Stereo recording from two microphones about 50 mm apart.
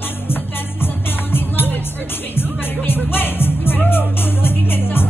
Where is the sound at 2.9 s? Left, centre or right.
Left.